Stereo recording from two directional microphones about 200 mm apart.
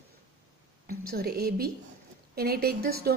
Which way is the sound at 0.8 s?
50° right (ahead or behind).